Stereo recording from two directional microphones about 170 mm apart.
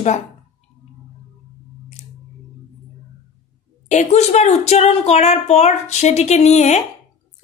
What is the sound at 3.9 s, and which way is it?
A woman's voice, 40° left (ahead or behind).